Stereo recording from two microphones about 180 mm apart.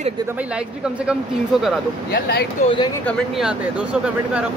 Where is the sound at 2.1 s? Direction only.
60° left (ahead or behind).